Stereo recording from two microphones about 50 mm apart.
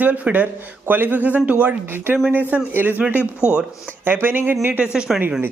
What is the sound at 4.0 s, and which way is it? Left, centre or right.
Speech, right.